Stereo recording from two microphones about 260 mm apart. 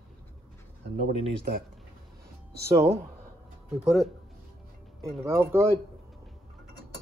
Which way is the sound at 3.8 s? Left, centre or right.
Centre.